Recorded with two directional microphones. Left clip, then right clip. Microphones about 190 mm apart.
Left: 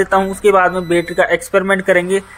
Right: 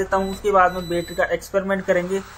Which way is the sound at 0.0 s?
35° left (ahead or behind).